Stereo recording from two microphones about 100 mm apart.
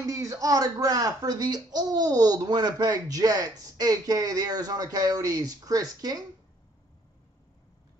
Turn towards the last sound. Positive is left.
turn(degrees=-40)  # may be behind; listen again after turning